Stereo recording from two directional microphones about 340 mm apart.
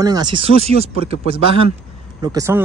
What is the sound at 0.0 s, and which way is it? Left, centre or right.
Speech, centre.